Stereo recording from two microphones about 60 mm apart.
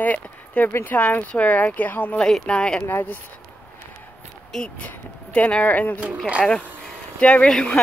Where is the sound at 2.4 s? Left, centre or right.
Centre.